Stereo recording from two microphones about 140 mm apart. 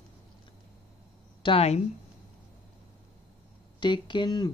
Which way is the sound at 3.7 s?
35° left (ahead or behind).